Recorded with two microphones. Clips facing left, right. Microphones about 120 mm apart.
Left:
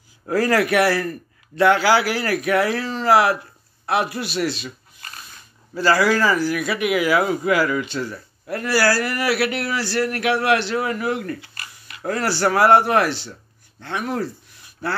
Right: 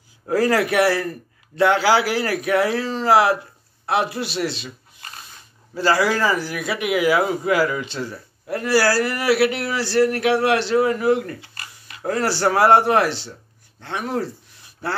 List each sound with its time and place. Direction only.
0.3 s speech: 20° right (ahead or behind)
5.8 s speech: 25° right (ahead or behind)